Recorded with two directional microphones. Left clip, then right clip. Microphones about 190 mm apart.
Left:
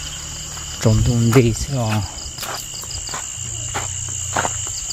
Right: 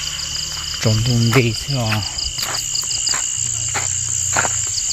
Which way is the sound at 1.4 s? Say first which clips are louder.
Right 1 dB; 20° left (ahead or behind).